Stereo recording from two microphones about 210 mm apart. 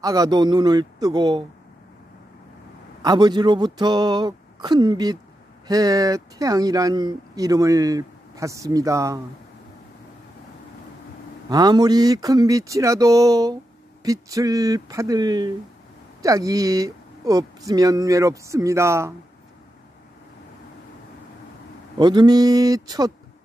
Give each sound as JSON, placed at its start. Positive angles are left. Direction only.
{"t": 0.0, "sound": "speech", "side_deg": -15}
{"t": 3.0, "sound": "speech", "side_deg": -20}
{"t": 11.5, "sound": "speech", "side_deg": -20}
{"t": 21.9, "sound": "speech", "side_deg": -20}